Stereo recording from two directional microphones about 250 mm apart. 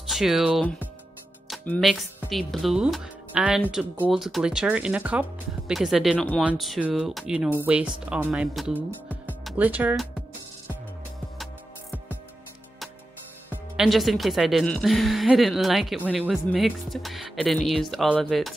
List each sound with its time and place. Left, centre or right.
0.1 s a woman's voice: centre
13.5 s a woman's voice: centre